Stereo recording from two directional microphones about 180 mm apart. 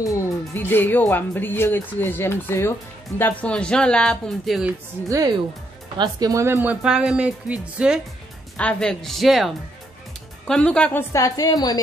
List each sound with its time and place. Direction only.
0.0 s speech: 15° left (ahead or behind); by 4.7 s centre (ahead or behind)
5.0 s speech: 20° right (ahead or behind)
8.5 s speech: 5° left (ahead or behind); by 11.8 s 20° left (ahead or behind)